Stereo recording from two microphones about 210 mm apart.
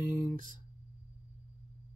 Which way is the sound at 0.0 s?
40° right (ahead or behind).